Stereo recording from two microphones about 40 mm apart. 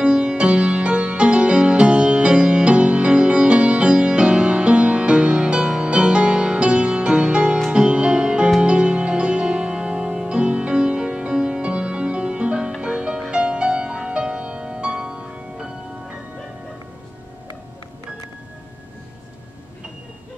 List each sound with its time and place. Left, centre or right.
0.0 s music: right